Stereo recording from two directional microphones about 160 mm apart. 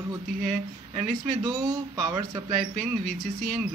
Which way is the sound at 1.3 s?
25° right (ahead or behind).